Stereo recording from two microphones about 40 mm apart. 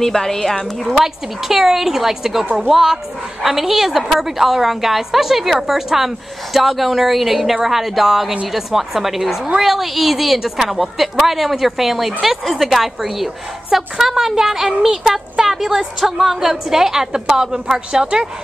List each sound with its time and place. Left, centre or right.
0.0 s a woman's voice: centre
0.9 s a woman's voice: centre